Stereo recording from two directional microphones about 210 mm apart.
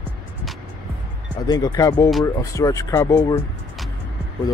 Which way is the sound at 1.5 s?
15° left (ahead or behind).